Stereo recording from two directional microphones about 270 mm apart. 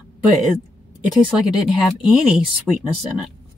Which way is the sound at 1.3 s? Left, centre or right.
Centre.